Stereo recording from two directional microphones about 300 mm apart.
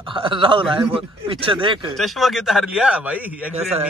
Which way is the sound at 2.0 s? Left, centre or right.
Centre.